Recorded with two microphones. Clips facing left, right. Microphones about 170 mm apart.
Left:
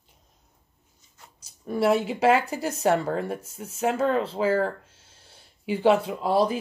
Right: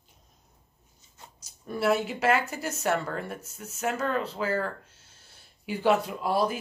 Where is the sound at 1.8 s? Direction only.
30° left (ahead or behind).